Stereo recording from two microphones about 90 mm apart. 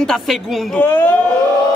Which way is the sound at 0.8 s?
20° left (ahead or behind).